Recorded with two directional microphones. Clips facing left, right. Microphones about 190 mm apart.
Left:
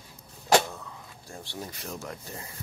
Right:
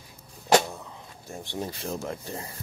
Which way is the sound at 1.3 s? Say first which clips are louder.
Right 6 dB; 25° right (ahead or behind).